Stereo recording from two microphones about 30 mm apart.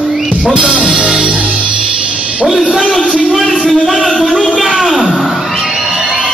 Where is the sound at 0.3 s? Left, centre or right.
Right.